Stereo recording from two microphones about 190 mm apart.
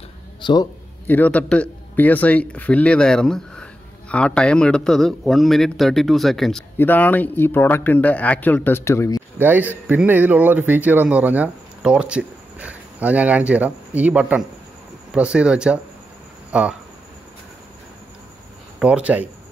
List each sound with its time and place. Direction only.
0.4 s a man's voice: 25° left (ahead or behind)
1.0 s a man's voice: 10° left (ahead or behind)
9.4 s speech: 10° right (ahead or behind)
18.8 s speech: 5° right (ahead or behind)